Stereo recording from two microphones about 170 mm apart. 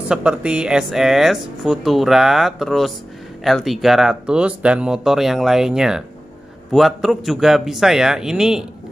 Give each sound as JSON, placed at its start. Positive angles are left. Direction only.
{"t": 0.1, "sound": "speech", "side_deg": -5}